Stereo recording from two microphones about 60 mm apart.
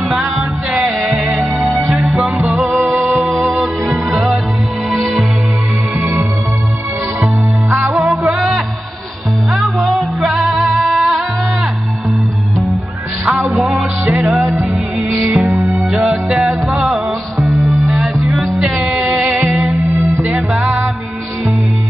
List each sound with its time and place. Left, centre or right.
0.4 s music: centre
0.9 s music: centre
1.7 s music: right
2.0 s music: centre
2.6 s music: right
3.4 s music: centre
5.9 s music: right
8.0 s music: centre
13.6 s music: centre
15.0 s music: right
15.6 s music: centre
20.0 s music: right